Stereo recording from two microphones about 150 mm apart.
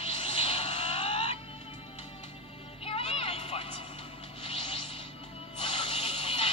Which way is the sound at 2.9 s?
40° left (ahead or behind).